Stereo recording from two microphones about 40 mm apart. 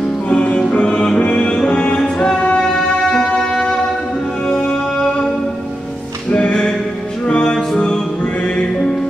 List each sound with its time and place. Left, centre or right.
0.3 s music: left
2.0 s music: centre
7.2 s music: left
7.5 s music: centre